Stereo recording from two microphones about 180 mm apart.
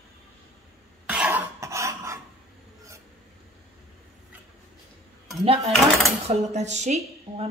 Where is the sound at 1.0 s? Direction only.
5° right (ahead or behind).